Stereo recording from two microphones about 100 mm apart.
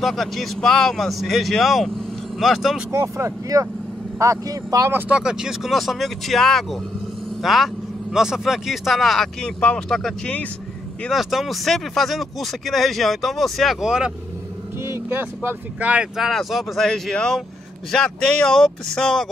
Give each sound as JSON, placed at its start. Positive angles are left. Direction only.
{"t": 0.0, "sound": "speech", "side_deg": 0}
{"t": 2.9, "sound": "speech", "side_deg": -25}
{"t": 4.9, "sound": "speech", "side_deg": -15}
{"t": 9.4, "sound": "speech", "side_deg": 10}
{"t": 14.8, "sound": "speech", "side_deg": -25}
{"t": 16.2, "sound": "speech", "side_deg": 0}